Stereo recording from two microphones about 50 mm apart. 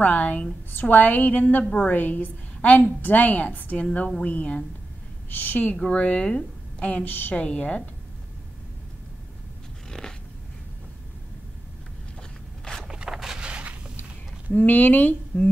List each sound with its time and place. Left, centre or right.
0.0 s a woman's voice: left
0.7 s a woman's voice: left
1.6 s a woman's voice: centre
1.9 s a woman's voice: left
5.3 s a woman's voice: left
9.8 s a sound: centre
12.2 s a sound: centre
12.8 s boat: centre
13.4 s a sound: right
14.5 s a woman's voice: left